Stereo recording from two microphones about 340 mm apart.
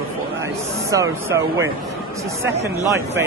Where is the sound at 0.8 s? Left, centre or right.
Centre.